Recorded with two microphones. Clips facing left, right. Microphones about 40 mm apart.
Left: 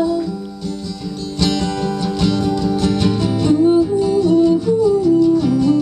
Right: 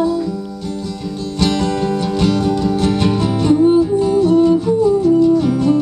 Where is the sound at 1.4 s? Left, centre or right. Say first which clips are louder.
Right 2 dB; centre.